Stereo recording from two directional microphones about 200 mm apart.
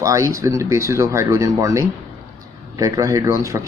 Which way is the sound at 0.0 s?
15° right (ahead or behind).